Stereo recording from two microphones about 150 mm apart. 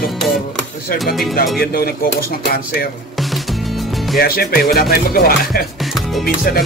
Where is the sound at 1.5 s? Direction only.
90° left.